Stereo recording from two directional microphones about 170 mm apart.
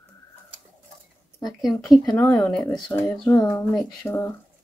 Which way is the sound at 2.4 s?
5° left (ahead or behind).